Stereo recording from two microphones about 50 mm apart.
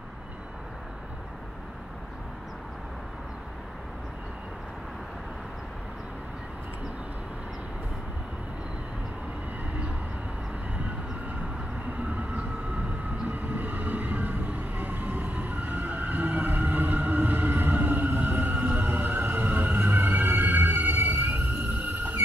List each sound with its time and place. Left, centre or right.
13.3 s train: right